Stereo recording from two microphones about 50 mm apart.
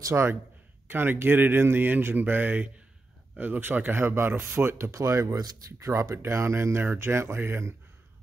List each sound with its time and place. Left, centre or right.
0.1 s speech: right
0.8 s speech: right
7.3 s speech: right